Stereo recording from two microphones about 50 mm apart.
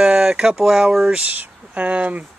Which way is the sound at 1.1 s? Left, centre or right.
Right.